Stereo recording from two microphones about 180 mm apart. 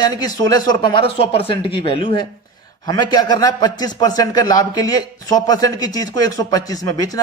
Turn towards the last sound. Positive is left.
turn(degrees=20)  # may be behind; listen again after turning